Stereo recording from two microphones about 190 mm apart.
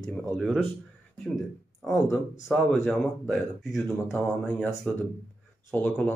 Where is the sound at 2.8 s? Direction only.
10° left (ahead or behind).